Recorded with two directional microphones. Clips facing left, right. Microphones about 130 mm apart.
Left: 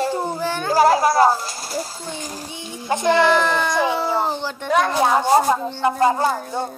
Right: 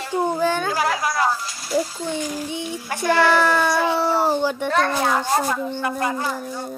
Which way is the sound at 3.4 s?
10° right (ahead or behind).